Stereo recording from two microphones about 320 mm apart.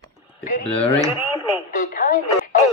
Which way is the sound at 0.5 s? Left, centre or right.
Centre.